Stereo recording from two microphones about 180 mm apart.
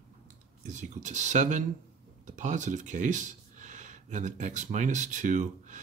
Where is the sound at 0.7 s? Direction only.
45° right (ahead or behind).